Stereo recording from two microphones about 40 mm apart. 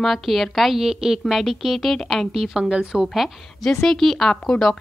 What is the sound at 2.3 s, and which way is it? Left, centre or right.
Speech, centre.